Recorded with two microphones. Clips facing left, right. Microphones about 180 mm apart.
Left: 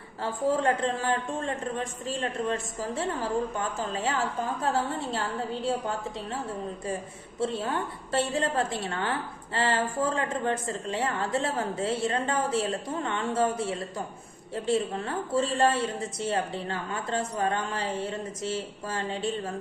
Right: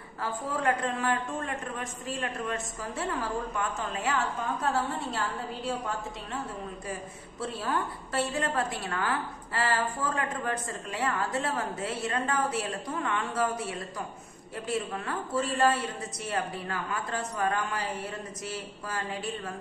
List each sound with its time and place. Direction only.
0.2 s a woman's voice: 30° left (ahead or behind)
5.1 s a woman's voice: 30° left (ahead or behind)